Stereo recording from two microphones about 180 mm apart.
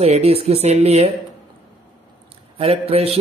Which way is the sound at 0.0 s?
35° right (ahead or behind).